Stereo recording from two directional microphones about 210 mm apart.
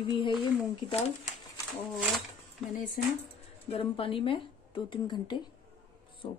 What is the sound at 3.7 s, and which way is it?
A woman's voice, 25° left (ahead or behind).